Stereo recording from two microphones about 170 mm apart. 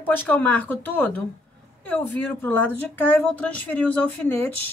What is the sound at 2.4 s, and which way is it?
Speech, 10° left (ahead or behind).